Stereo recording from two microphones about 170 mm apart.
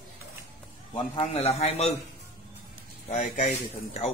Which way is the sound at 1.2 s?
35° left (ahead or behind).